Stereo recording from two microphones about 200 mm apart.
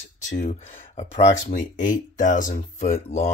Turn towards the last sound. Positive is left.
turn(degrees=40)  # may be behind; listen again after turning